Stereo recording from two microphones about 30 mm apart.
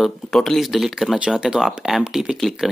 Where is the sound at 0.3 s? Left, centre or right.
Centre.